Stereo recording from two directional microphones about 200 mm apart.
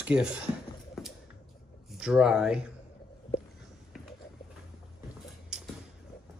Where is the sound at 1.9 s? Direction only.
5° right (ahead or behind).